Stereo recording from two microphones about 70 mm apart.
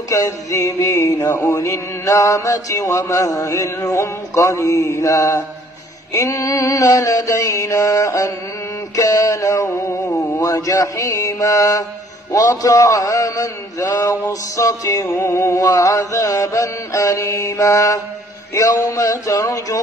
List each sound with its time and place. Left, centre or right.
0.1 s a man's voice: left
1.5 s mantra: left
9.7 s music: left
10.4 s a man's voice: left
15.1 s music: left
15.6 s mantra: left